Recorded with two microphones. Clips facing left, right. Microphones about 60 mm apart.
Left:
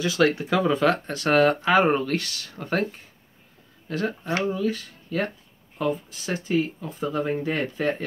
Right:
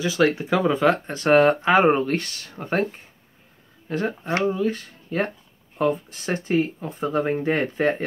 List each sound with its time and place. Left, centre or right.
0.0 s speech: centre
4.6 s speech: right
5.8 s speech: right
6.8 s speech: right